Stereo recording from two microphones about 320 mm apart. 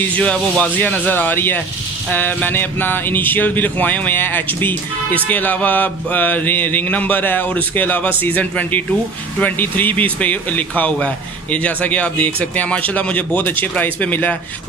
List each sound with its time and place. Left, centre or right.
0.2 s speech: centre